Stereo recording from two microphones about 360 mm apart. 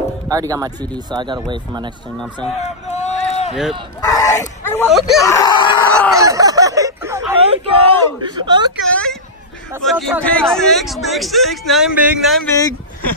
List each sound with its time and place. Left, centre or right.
0.3 s speech: centre
2.6 s a sound: centre
4.0 s speech: centre
6.1 s a sound: centre
8.8 s a man's voice: centre
12.5 s speech: centre